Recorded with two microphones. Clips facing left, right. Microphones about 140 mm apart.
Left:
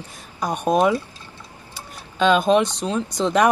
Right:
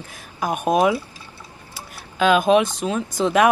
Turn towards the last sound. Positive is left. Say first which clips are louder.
# right 1 dB
turn(degrees=-5)  # may be behind; listen again after turning